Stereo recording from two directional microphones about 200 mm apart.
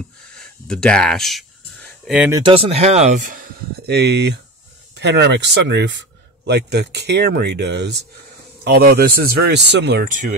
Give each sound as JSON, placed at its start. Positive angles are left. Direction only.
{"t": 0.4, "sound": "a sound", "side_deg": 5}
{"t": 2.3, "sound": "speech", "side_deg": -25}
{"t": 10.0, "sound": "speech", "side_deg": -40}